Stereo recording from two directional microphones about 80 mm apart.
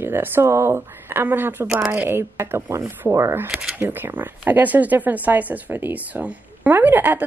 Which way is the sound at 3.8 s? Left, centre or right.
Right.